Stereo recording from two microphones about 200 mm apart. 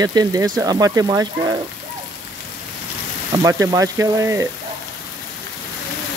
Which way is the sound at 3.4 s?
15° right (ahead or behind).